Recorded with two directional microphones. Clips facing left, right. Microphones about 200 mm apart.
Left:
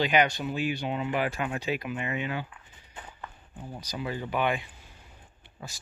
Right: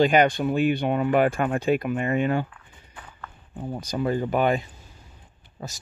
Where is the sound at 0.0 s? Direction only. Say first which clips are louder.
Right 6 dB; 45° right (ahead or behind).